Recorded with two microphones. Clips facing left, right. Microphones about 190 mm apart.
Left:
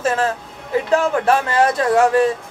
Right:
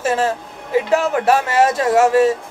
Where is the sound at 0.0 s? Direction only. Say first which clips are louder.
Right 1 dB; 10° right (ahead or behind).